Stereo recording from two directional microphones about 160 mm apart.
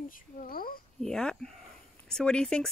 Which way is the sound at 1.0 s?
5° left (ahead or behind).